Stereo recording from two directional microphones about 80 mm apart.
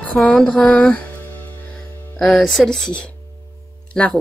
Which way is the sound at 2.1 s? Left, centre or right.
Centre.